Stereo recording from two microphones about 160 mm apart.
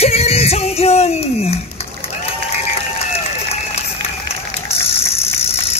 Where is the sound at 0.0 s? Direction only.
40° left (ahead or behind).